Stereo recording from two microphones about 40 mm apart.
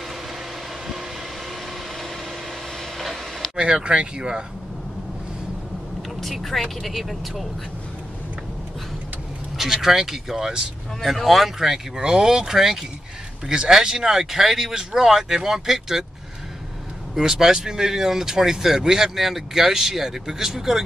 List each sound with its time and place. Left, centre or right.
3.0 s a sound: centre
3.5 s speech: right
6.2 s speech: centre
9.6 s speech: centre
11.0 s speech: centre
12.0 s speech: centre
17.1 s speech: centre